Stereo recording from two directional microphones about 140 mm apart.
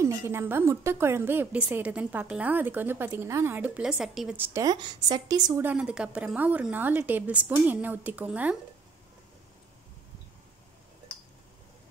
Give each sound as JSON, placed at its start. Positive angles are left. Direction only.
{"t": 0.0, "sound": "a woman's voice", "side_deg": -20}
{"t": 4.6, "sound": "a woman's voice", "side_deg": -30}
{"t": 5.6, "sound": "a woman's voice", "side_deg": -10}